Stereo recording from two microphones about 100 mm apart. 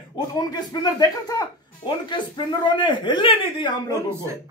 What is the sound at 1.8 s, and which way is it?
Speech, 50° left (ahead or behind).